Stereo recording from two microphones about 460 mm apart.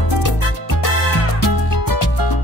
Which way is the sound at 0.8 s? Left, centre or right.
Left.